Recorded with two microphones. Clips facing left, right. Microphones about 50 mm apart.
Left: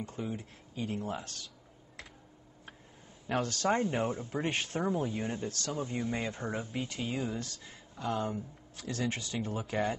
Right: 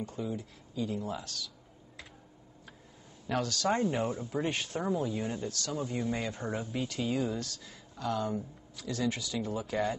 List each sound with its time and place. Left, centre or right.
0.0 s speech: left
3.3 s speech: left
8.7 s speech: left